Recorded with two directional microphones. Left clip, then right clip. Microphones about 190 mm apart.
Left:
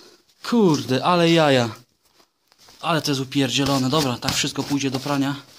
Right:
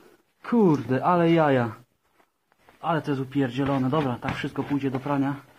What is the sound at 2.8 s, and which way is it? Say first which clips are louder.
Speech: left 4 dB; 25° left (ahead or behind).